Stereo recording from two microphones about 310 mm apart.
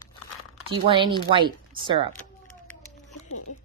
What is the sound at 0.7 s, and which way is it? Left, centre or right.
Speech, centre.